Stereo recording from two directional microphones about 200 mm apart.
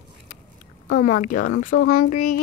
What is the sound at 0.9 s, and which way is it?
Speech, 45° left (ahead or behind).